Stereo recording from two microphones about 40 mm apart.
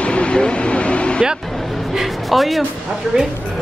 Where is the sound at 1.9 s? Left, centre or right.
Centre.